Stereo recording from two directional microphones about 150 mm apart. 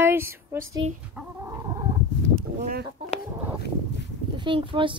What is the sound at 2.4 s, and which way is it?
Chicken, 70° right (ahead or behind).